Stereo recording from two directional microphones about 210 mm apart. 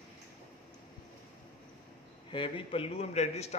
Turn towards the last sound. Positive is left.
turn(degrees=30)  # may be behind; listen again after turning